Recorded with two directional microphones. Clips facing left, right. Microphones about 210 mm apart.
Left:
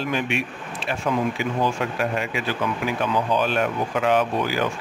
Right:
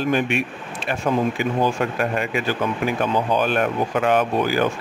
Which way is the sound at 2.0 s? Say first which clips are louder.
Right 2 dB; 50° right (ahead or behind).